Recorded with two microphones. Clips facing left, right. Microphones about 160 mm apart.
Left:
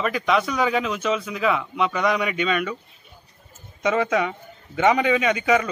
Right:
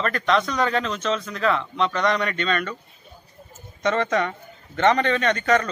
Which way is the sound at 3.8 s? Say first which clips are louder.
Left 1 dB; 5° left (ahead or behind).